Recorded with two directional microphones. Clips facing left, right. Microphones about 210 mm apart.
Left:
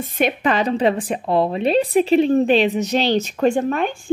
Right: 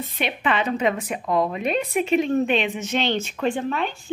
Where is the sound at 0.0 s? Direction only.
45° left (ahead or behind).